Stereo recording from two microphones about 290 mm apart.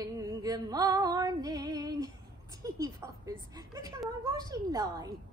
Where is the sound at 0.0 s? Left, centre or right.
Centre.